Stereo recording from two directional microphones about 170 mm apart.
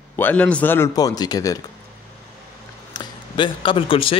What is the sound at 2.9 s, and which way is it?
Speech, 30° left (ahead or behind).